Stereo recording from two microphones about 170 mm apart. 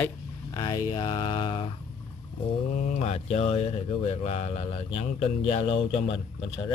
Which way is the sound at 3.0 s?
35° left (ahead or behind).